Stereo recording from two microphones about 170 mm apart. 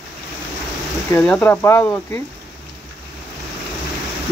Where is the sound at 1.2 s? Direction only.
5° left (ahead or behind).